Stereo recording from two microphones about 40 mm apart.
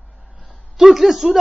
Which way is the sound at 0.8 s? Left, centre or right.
Centre.